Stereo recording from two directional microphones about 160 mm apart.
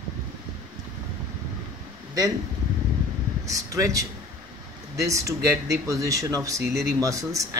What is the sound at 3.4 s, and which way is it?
Speech, 20° right (ahead or behind).